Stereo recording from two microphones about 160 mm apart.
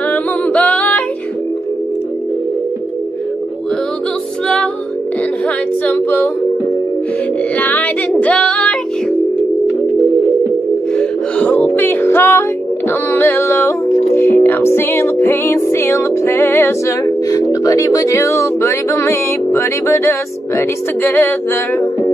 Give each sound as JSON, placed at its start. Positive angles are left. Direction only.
{"t": 0.1, "sound": "singing", "side_deg": 10}
{"t": 5.9, "sound": "music", "side_deg": 10}
{"t": 7.5, "sound": "child singing", "side_deg": 10}
{"t": 11.0, "sound": "music", "side_deg": 10}